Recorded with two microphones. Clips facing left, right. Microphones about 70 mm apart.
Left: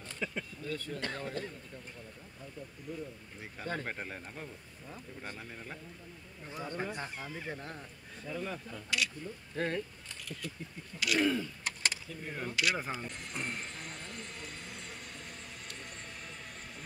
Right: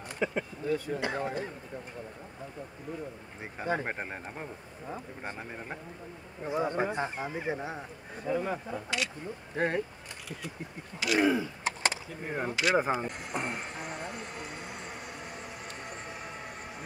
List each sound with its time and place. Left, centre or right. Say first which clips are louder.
0.2 s speech: right 7 dB; right
3.6 s speech: right 7 dB; centre
3.9 s speech: right 4 dB; right
11.0 s speech: right 4 dB; centre
13.3 s vehicle: right 5 dB; centre